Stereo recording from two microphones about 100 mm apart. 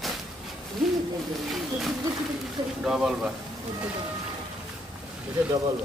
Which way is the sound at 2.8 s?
5° right (ahead or behind).